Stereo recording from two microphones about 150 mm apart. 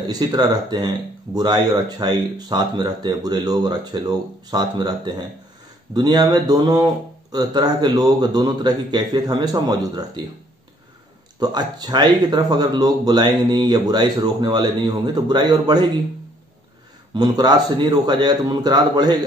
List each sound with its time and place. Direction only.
0.0 s speech: 25° right (ahead or behind)
11.3 s speech: 25° right (ahead or behind)
17.1 s speech: 25° right (ahead or behind)